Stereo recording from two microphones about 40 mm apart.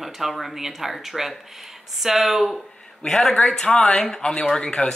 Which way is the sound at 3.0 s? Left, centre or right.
Centre.